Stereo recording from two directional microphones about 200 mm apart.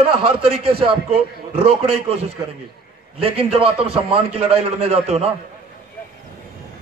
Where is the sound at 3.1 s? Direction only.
30° right (ahead or behind).